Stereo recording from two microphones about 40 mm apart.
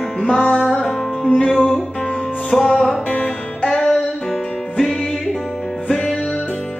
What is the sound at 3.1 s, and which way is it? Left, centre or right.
Music, left.